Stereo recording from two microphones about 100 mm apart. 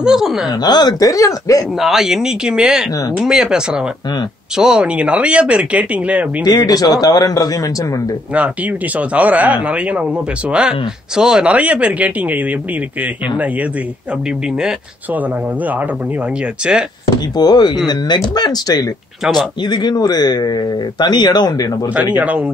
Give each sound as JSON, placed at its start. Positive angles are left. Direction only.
{"t": 0.0, "sound": "speech", "side_deg": -5}
{"t": 0.5, "sound": "speech", "side_deg": 45}
{"t": 1.8, "sound": "speech", "side_deg": -5}
{"t": 6.4, "sound": "speech", "side_deg": 45}
{"t": 8.4, "sound": "speech", "side_deg": -15}
{"t": 15.1, "sound": "speech", "side_deg": -15}
{"t": 17.4, "sound": "speech", "side_deg": 45}
{"t": 21.9, "sound": "speech", "side_deg": -15}